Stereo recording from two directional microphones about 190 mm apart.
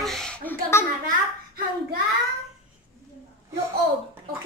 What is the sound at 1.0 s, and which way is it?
Speech, 50° right (ahead or behind).